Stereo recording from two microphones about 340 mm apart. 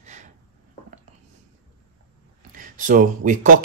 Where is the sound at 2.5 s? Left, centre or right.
Right.